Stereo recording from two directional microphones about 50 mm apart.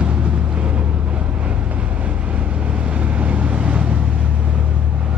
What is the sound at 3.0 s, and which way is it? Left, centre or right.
Vehicle, right.